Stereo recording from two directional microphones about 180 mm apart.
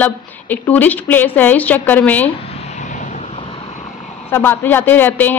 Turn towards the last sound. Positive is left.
turn(degrees=10)  # may be behind; listen again after turning